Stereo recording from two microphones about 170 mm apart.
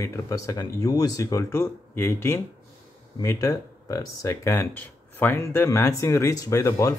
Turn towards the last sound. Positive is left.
turn(degrees=20)  # may be behind; listen again after turning